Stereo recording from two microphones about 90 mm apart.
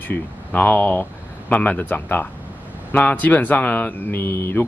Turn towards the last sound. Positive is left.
turn(degrees=25)  # may be behind; listen again after turning